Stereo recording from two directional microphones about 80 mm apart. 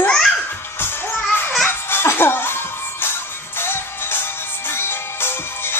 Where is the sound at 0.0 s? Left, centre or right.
Centre.